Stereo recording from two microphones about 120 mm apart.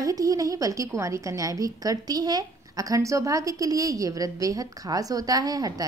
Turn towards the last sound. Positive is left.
turn(degrees=-30)  # may be behind; listen again after turning